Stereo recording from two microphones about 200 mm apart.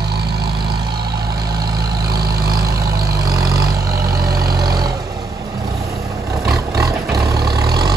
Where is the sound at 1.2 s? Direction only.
20° right (ahead or behind).